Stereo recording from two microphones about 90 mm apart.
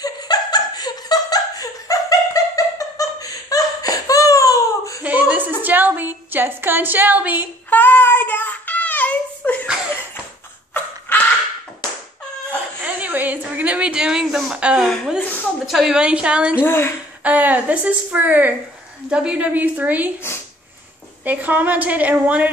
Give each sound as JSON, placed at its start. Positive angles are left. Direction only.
{"t": 0.0, "sound": "laughter", "side_deg": 50}
{"t": 5.3, "sound": "a woman's voice", "side_deg": -20}
{"t": 7.7, "sound": "child singing", "side_deg": 20}
{"t": 10.7, "sound": "a sound", "side_deg": 25}
{"t": 12.8, "sound": "a sound", "side_deg": -20}
{"t": 14.9, "sound": "a woman's voice", "side_deg": -5}
{"t": 16.6, "sound": "a woman's voice", "side_deg": 25}
{"t": 17.2, "sound": "a woman's voice", "side_deg": -15}
{"t": 21.2, "sound": "a woman's voice", "side_deg": -20}